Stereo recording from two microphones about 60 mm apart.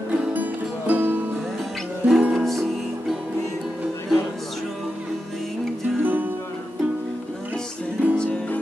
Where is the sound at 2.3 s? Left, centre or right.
Centre.